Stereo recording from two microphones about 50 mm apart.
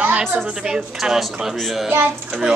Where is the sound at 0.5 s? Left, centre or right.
Centre.